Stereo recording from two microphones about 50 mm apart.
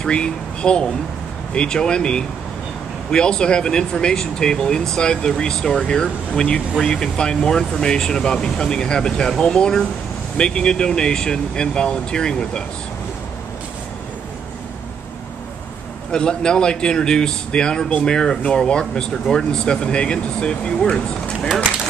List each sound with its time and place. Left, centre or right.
0.0 s speech: centre
16.1 s speech: centre